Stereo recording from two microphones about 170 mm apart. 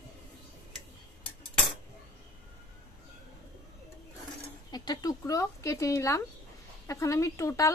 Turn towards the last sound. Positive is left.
turn(degrees=20)  # may be behind; listen again after turning